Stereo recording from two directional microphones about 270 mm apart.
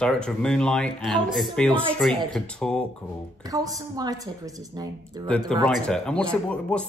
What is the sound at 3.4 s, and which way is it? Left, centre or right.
A woman's voice, centre.